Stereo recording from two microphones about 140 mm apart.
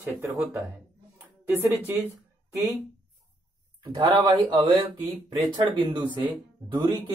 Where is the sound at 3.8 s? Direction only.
30° right (ahead or behind).